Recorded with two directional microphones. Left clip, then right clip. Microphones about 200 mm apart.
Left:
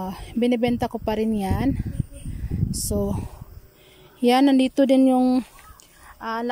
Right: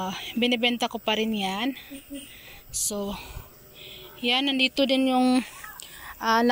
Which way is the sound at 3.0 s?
30° left (ahead or behind).